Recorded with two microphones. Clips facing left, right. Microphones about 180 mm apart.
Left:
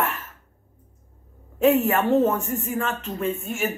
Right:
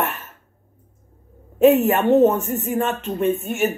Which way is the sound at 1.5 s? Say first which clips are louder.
Right 4 dB; 20° right (ahead or behind).